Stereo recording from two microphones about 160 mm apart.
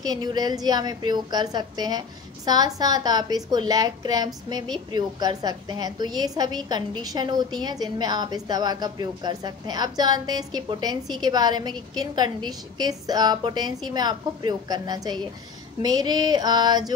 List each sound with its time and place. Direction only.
0.0 s a woman's voice: 25° right (ahead or behind)